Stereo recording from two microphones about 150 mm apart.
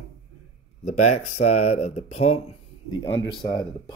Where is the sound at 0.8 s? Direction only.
50° left (ahead or behind).